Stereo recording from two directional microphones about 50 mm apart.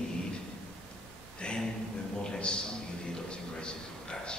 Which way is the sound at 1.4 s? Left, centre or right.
Centre.